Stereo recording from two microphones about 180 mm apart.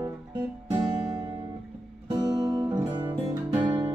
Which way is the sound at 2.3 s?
15° right (ahead or behind).